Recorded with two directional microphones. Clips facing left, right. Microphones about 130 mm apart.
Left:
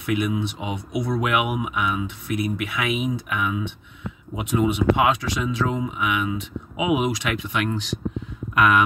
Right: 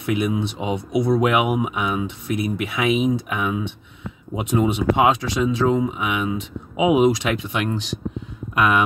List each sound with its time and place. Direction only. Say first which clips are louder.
0.0 s speech: right 2 dB; 30° right (ahead or behind)